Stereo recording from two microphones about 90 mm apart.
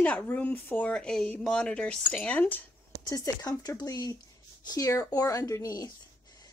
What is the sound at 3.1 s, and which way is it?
Speech, 40° left (ahead or behind).